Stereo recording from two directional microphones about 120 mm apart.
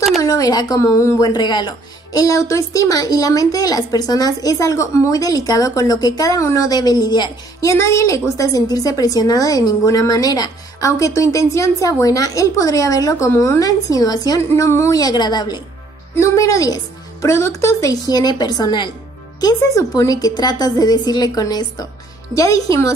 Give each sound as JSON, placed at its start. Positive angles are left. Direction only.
{"t": 0.2, "sound": "a woman's voice", "side_deg": 30}
{"t": 2.1, "sound": "a woman's voice", "side_deg": 25}
{"t": 7.7, "sound": "a woman's voice", "side_deg": 25}
{"t": 16.2, "sound": "a woman's voice", "side_deg": 25}